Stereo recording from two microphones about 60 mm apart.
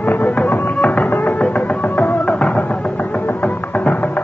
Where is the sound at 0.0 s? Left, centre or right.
Left.